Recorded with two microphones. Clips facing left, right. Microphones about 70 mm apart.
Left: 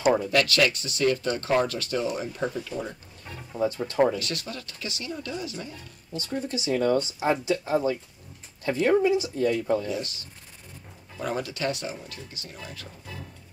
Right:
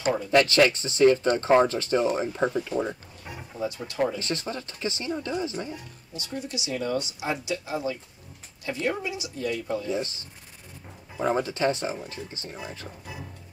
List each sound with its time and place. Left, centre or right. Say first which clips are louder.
0.3 s speech: right 3 dB; right
3.6 s speech: left 5 dB; left
4.2 s speech: right 3 dB; right
6.1 s speech: left 4 dB; left
9.8 s speech: right 2 dB; right